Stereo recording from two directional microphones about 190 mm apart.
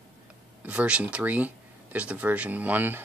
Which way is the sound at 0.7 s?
5° right (ahead or behind).